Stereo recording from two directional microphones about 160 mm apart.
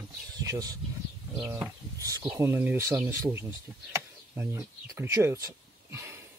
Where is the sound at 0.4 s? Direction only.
20° right (ahead or behind).